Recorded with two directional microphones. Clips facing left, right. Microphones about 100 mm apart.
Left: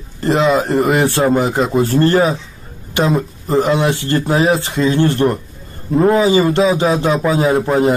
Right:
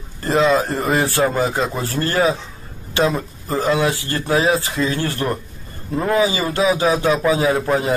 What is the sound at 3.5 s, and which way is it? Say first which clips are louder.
A man's voice: left 4 dB; 30° left (ahead or behind).